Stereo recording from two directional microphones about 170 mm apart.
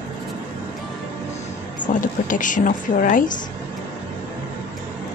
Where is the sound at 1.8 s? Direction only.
50° left (ahead or behind).